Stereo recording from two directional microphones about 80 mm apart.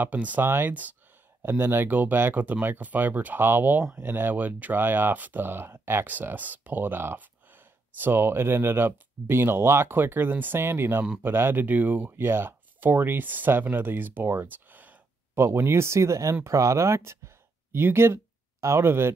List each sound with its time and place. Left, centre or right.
0.0 s speech: centre
15.4 s speech: right